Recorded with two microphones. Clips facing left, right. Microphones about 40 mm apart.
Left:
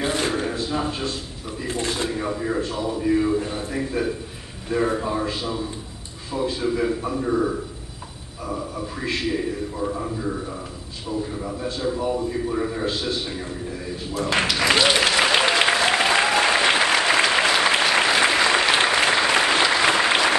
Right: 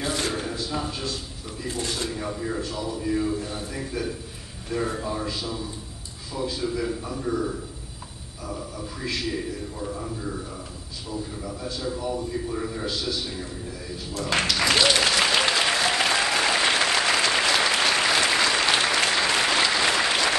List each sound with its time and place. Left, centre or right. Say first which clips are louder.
0.0 s a sound: left 4 dB; left
1.6 s speech: left 4 dB; left
14.1 s applause: left 3 dB; centre